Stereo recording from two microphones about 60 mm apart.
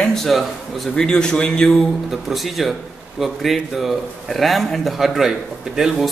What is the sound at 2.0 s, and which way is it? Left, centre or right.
A man's voice, centre.